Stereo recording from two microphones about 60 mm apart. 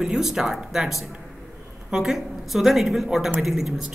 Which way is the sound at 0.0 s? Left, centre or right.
Centre.